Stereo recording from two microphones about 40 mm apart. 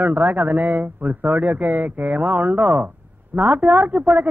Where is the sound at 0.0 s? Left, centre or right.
Right.